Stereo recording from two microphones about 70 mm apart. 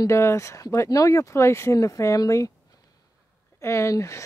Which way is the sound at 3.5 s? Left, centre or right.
Left.